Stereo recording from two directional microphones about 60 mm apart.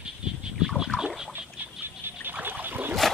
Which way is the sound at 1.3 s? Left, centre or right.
Right.